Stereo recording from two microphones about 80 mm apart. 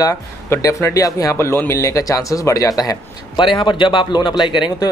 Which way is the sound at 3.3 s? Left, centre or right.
Left.